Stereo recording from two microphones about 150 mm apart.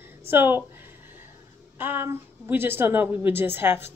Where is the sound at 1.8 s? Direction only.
15° right (ahead or behind).